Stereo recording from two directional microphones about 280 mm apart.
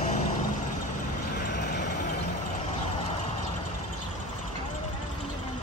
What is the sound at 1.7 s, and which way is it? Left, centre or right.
Vehicle, left.